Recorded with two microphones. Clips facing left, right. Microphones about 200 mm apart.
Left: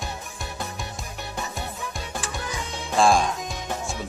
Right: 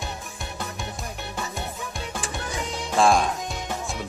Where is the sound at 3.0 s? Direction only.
Centre (ahead or behind).